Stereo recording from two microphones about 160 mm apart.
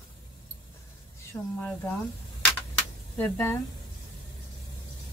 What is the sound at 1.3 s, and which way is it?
Speech, 10° left (ahead or behind).